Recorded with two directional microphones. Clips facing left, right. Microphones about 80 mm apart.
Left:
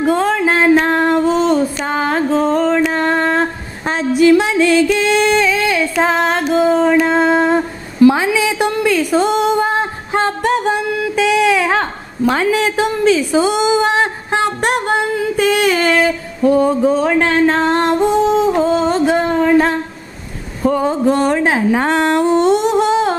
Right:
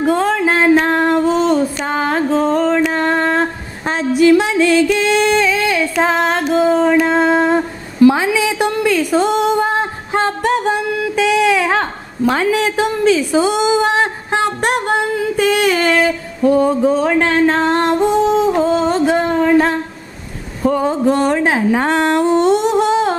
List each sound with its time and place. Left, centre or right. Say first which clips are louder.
0.0 s a sound: even; centre
16.3 s music: even; left
20.6 s speech: even; left